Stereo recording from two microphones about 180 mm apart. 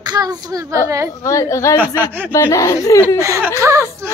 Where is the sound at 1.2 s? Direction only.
15° left (ahead or behind).